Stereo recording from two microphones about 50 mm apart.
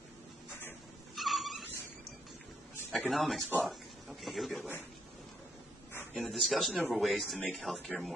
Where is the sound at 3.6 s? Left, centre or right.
Centre.